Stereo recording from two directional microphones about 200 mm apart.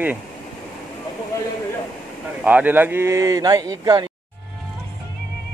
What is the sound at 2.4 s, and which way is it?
Speech, 10° right (ahead or behind).